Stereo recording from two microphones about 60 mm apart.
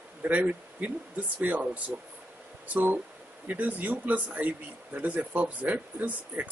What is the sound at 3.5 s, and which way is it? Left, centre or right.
Speech, right.